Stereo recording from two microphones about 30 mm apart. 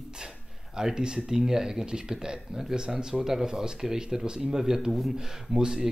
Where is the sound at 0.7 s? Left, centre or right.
Right.